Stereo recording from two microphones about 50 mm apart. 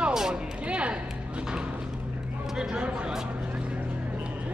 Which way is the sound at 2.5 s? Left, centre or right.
Centre.